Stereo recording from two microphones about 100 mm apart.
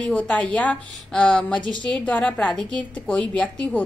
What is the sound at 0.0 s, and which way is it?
A woman's voice, 15° left (ahead or behind).